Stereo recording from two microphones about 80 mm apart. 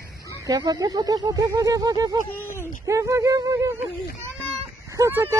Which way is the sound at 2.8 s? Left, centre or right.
Right.